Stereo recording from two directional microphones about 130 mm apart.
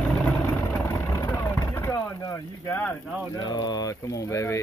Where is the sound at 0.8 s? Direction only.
25° left (ahead or behind).